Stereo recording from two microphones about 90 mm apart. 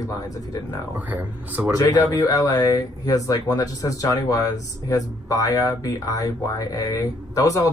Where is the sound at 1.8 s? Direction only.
40° left (ahead or behind).